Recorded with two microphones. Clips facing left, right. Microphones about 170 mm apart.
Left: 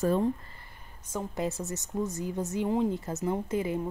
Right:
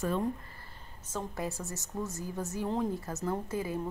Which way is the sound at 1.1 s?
20° left (ahead or behind).